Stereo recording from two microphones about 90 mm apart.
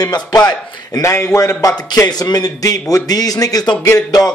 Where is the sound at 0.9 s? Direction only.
35° left (ahead or behind).